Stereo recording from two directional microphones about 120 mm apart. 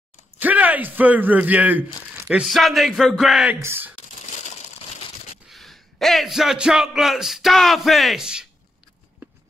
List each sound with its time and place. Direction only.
0.4 s speech: 15° right (ahead or behind)
2.2 s speech: centre (ahead or behind)
3.6 s speech: 15° right (ahead or behind)
5.5 s speech: centre (ahead or behind)